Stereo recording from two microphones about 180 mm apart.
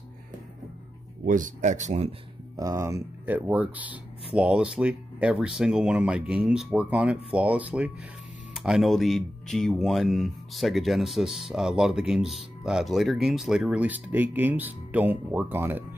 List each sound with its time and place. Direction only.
1.2 s speech: 45° right (ahead or behind)
2.5 s speech: 20° right (ahead or behind)